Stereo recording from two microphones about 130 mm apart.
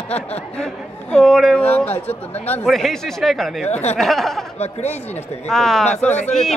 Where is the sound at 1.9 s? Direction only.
50° left (ahead or behind).